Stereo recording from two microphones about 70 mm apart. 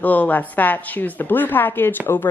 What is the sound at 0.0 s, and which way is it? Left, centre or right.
A woman's voice, left.